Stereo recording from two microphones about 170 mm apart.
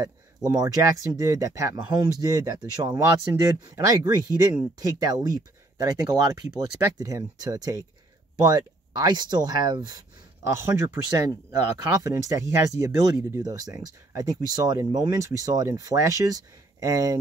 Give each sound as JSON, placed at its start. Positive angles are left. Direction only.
{"t": 0.0, "sound": "speech", "side_deg": -20}
{"t": 5.8, "sound": "speech", "side_deg": -20}